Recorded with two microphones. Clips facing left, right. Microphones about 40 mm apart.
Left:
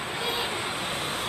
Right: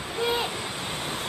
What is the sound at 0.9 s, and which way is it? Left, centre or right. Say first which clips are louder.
Vehicle: left 1 dB; centre.